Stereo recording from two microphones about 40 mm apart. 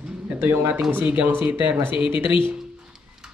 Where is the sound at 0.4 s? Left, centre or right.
Right.